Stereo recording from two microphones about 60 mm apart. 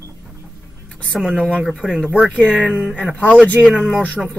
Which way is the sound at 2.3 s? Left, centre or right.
Left.